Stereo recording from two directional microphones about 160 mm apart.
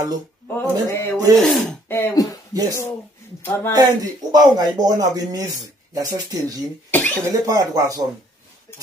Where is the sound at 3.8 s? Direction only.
25° right (ahead or behind).